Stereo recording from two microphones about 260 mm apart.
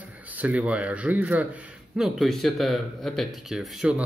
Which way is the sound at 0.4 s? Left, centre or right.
Centre.